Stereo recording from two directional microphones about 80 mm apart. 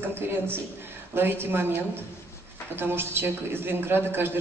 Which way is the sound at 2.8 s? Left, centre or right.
Right.